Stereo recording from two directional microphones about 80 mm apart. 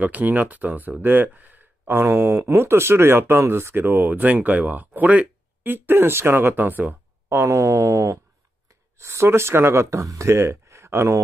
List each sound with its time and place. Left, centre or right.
0.0 s speech: right